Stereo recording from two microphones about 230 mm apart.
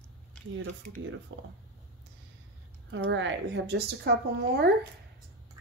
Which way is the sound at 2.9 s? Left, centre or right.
Right.